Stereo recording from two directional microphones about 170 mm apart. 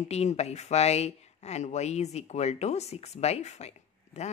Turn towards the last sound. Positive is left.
turn(degrees=40)  # may be behind; listen again after turning